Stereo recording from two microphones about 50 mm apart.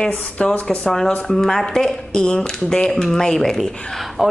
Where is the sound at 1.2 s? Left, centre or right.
Centre.